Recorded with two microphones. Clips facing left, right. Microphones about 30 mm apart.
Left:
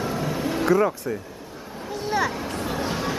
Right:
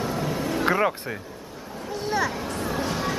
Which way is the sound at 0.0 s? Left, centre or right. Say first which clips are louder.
Left 1 dB; centre.